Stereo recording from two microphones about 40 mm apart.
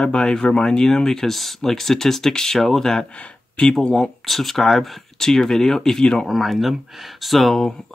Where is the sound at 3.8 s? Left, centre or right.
Centre.